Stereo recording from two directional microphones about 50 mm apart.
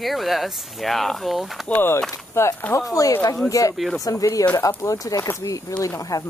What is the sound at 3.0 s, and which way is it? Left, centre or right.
Speech, left.